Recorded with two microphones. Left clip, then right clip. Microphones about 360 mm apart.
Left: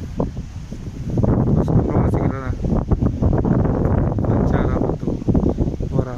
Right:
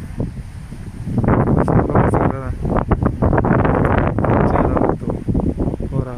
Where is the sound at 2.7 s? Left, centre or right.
Right.